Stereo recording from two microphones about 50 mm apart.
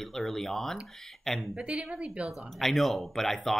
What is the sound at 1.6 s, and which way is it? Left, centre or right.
Speech, right.